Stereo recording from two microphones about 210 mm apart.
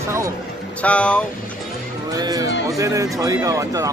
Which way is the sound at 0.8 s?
5° left (ahead or behind).